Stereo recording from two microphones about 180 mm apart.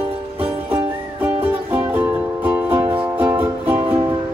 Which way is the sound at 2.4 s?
10° right (ahead or behind).